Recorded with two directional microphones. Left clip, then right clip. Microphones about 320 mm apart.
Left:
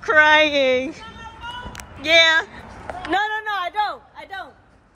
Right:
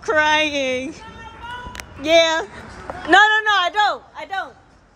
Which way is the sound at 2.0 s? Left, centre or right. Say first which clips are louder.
Left 1 dB; centre.